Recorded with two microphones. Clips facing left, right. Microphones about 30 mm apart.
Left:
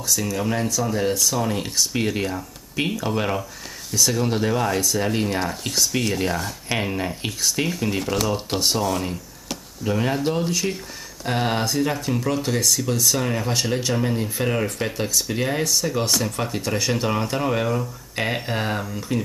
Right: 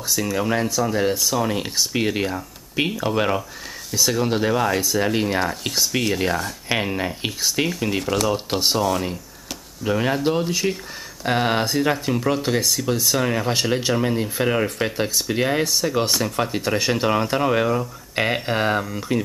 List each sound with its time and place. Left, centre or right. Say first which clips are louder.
0.1 s speech: right 2 dB; centre